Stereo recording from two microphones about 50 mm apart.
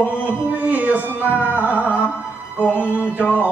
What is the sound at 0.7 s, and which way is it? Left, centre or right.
Music, right.